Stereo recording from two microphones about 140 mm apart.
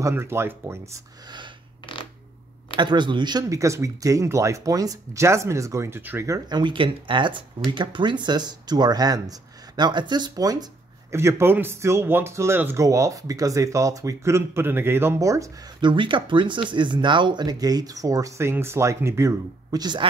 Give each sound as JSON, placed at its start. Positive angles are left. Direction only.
{"t": 0.0, "sound": "speech", "side_deg": -15}
{"t": 2.7, "sound": "speech", "side_deg": -35}
{"t": 15.9, "sound": "speech", "side_deg": -35}